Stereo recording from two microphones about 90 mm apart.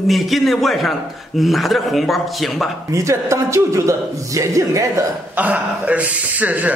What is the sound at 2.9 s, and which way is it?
A man's voice, 35° right (ahead or behind).